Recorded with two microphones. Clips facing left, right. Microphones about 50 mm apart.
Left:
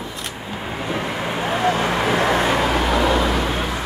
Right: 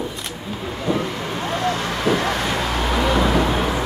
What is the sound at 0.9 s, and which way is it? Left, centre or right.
Vehicle, centre.